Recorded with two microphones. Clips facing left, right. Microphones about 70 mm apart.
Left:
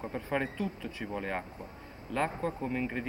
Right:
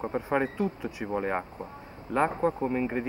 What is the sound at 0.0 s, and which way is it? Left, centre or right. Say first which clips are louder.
Speech: right 6 dB; right.